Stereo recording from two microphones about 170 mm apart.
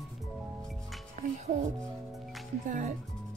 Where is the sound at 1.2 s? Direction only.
45° right (ahead or behind).